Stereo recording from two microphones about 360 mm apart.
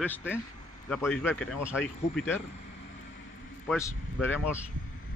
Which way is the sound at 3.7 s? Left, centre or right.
Centre.